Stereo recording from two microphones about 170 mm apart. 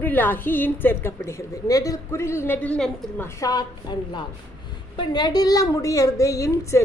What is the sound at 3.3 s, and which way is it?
A woman's voice, 20° left (ahead or behind).